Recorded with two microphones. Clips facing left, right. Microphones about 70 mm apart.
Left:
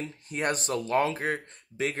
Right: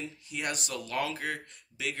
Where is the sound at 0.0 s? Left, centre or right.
Left.